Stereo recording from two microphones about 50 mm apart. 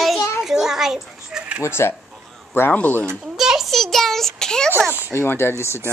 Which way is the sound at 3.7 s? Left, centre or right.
Centre.